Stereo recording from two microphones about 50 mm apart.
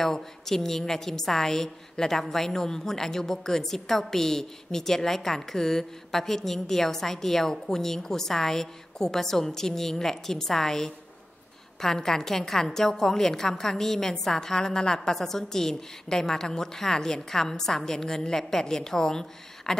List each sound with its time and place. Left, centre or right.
0.0 s a woman's voice: centre